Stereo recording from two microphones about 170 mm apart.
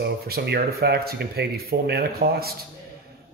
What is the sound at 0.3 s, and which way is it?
Speech, 65° right (ahead or behind).